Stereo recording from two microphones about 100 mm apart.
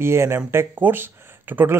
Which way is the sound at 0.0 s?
25° right (ahead or behind).